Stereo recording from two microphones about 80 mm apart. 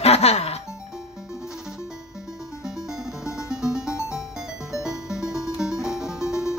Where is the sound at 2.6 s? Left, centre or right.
Centre.